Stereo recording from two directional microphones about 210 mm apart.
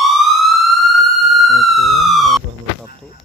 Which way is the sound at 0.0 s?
Centre (ahead or behind).